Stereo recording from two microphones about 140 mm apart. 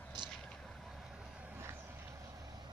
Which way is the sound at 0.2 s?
30° right (ahead or behind).